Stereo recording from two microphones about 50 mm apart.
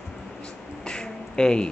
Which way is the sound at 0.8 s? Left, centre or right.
Centre.